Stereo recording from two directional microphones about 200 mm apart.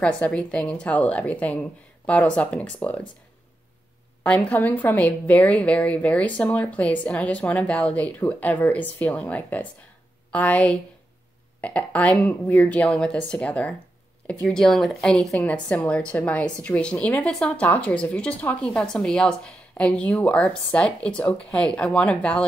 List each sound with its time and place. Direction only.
0.2 s a woman's voice: 5° left (ahead or behind)
4.2 s a woman's voice: 5° left (ahead or behind)